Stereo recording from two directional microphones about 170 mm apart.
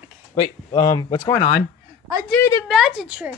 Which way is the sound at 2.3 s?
10° left (ahead or behind).